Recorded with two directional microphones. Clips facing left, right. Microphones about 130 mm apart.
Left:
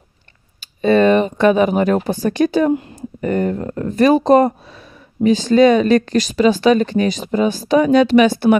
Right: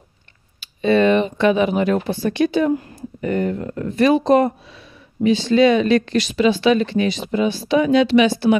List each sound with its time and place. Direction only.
0.6 s speech: 45° left (ahead or behind)